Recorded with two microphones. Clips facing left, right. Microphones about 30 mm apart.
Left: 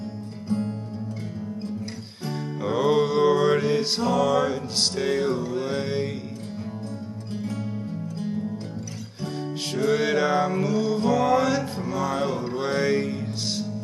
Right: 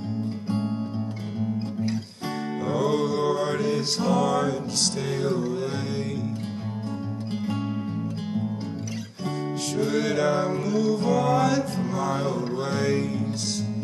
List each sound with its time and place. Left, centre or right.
0.5 s music: right
2.6 s mantra: centre
5.0 s music: centre
7.3 s music: right
9.8 s music: centre